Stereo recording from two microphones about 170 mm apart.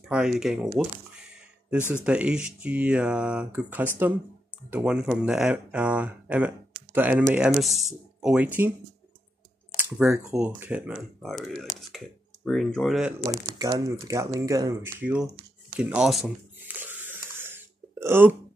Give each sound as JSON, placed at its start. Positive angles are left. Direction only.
{"t": 0.1, "sound": "speech", "side_deg": -5}
{"t": 2.0, "sound": "speech", "side_deg": -5}
{"t": 9.8, "sound": "speech", "side_deg": -10}
{"t": 13.6, "sound": "speech", "side_deg": -20}
{"t": 16.5, "sound": "a sound", "side_deg": -10}